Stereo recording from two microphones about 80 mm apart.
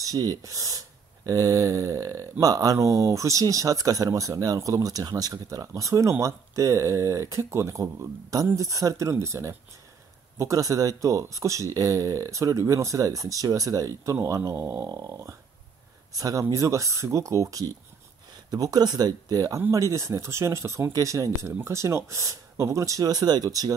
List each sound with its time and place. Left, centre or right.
0.0 s speech: right
14.9 s speech: right